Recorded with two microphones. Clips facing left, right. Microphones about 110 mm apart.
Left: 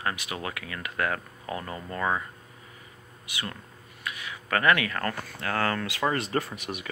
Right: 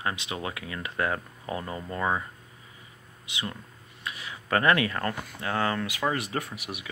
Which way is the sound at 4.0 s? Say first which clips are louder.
Left 1 dB; 30° right (ahead or behind).